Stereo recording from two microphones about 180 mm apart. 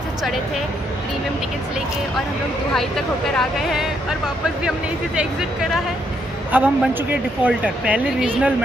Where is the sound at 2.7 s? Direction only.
5° left (ahead or behind).